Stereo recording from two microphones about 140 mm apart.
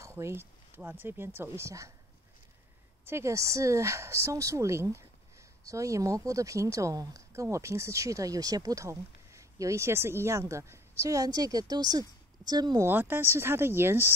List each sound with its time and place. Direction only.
0.2 s speech: 15° right (ahead or behind)
3.1 s a woman's voice: 20° right (ahead or behind)
12.8 s speech: 15° right (ahead or behind)